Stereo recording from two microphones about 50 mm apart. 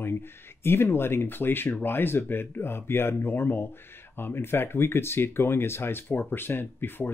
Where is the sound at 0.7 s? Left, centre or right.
Left.